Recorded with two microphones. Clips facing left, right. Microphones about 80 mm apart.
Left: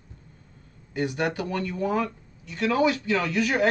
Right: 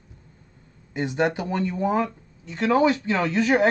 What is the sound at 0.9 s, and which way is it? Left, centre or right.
Speech, right.